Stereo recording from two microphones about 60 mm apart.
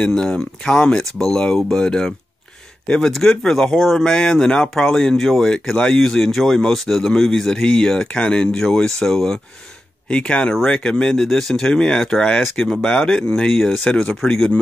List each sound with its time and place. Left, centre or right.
0.0 s speech: centre